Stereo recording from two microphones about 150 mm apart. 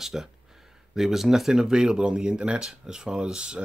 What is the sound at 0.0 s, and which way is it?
Speech, 5° right (ahead or behind).